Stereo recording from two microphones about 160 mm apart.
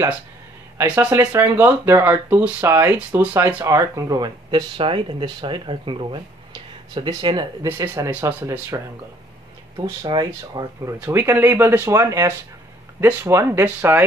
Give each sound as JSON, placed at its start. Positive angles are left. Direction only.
{"t": 0.7, "sound": "speech", "side_deg": -10}
{"t": 10.0, "sound": "speech", "side_deg": -25}